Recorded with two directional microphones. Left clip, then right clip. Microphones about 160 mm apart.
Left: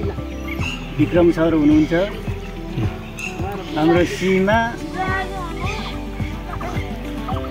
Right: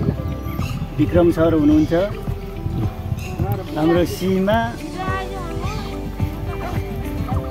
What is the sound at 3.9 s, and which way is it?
Speech, 25° right (ahead or behind).